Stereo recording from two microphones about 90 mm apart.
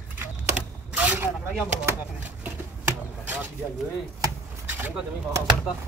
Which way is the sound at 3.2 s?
20° right (ahead or behind).